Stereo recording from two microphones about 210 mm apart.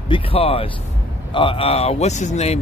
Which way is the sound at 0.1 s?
25° left (ahead or behind).